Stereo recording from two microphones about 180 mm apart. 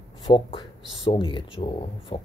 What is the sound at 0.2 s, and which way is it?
Speech, 30° left (ahead or behind).